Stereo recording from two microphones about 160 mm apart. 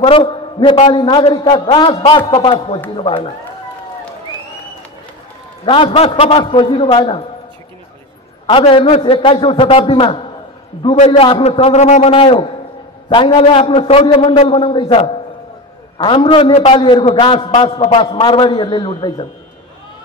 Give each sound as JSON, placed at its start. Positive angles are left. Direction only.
{"t": 0.0, "sound": "a man's voice", "side_deg": 35}
{"t": 5.7, "sound": "a man's voice", "side_deg": 35}
{"t": 8.5, "sound": "a man's voice", "side_deg": 35}